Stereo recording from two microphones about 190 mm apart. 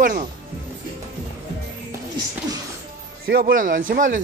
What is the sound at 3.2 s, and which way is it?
Speech, 50° right (ahead or behind).